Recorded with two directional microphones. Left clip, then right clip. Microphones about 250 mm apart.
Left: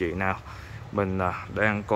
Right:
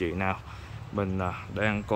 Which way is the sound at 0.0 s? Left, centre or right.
Centre.